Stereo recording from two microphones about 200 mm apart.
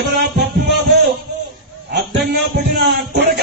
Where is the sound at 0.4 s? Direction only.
50° right (ahead or behind).